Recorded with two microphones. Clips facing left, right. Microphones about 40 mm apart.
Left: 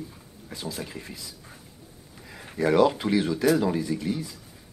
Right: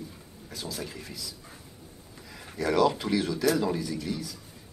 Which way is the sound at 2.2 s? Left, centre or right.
Centre.